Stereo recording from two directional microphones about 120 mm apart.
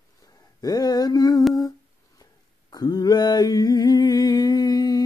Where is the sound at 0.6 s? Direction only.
35° left (ahead or behind).